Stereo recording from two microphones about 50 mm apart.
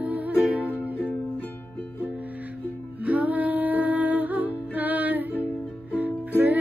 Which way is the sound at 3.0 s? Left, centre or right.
Right.